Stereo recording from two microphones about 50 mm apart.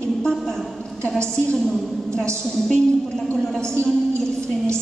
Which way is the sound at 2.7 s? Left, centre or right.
Left.